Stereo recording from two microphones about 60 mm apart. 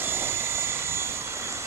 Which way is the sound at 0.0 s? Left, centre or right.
Right.